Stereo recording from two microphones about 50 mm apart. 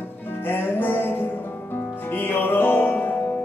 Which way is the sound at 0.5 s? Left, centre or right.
Left.